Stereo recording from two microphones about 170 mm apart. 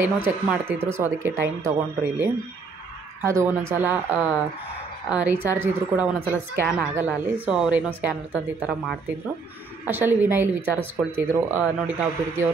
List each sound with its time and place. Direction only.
0.0 s a woman's voice: 10° right (ahead or behind)